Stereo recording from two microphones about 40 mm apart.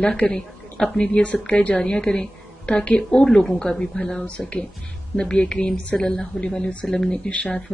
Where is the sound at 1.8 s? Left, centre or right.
Left.